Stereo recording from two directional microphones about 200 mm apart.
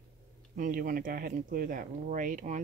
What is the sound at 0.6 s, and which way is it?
Speech, 45° right (ahead or behind).